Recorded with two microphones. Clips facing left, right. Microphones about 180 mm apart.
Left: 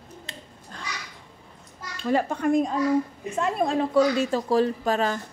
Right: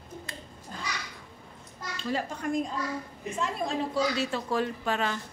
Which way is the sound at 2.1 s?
60° left (ahead or behind).